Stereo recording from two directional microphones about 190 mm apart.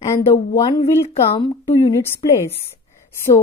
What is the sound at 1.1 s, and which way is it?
Speech, 35° left (ahead or behind).